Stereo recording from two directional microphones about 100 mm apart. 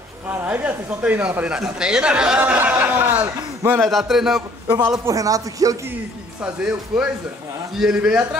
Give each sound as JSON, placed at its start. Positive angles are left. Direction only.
{"t": 0.3, "sound": "speech", "side_deg": -15}
{"t": 2.4, "sound": "a man's voice", "side_deg": -20}
{"t": 3.8, "sound": "a man's voice", "side_deg": 0}
{"t": 5.0, "sound": "a man's voice", "side_deg": -35}
{"t": 6.4, "sound": "speech", "side_deg": -10}